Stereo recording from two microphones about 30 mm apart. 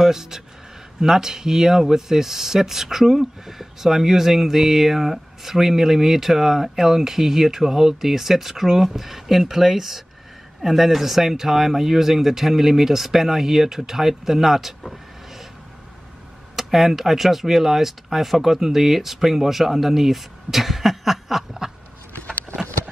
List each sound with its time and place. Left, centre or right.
0.0 s speech: centre
16.5 s speech: centre
22.1 s vehicle: left